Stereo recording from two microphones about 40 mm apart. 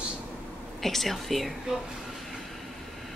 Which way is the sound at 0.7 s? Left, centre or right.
Centre.